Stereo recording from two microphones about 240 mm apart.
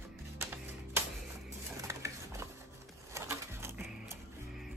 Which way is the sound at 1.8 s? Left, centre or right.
Centre.